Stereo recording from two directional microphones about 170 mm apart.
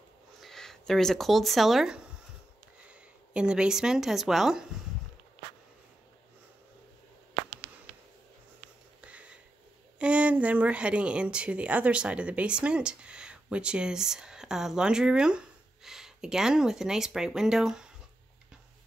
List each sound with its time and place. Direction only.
0.4 s speech: centre (ahead or behind)
9.0 s a sound: 5° right (ahead or behind)
9.9 s speech: 5° right (ahead or behind)